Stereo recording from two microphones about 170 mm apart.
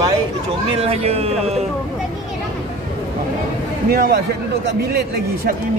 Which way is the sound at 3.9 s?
65° right (ahead or behind).